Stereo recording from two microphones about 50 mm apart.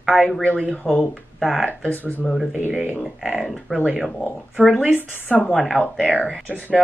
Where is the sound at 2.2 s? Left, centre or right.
Centre.